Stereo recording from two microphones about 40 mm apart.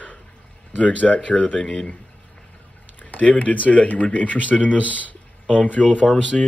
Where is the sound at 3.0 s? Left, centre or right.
Left.